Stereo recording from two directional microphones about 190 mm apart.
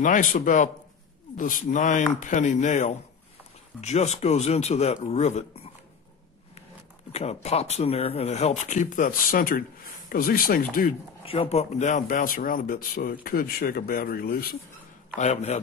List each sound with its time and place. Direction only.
0.0 s speech: 45° left (ahead or behind)
7.1 s speech: 35° left (ahead or behind)
11.2 s speech: 30° left (ahead or behind); by 14.6 s 50° left (ahead or behind)
15.1 s speech: 35° left (ahead or behind)